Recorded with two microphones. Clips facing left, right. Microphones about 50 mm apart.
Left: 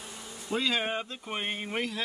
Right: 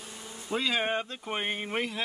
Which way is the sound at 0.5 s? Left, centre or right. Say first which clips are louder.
Right 1 dB; centre.